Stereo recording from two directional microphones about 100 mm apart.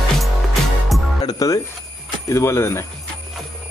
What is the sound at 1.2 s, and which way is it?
Music, 40° left (ahead or behind).